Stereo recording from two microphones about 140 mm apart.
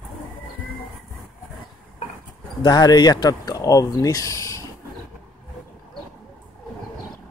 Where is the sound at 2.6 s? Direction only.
30° left (ahead or behind).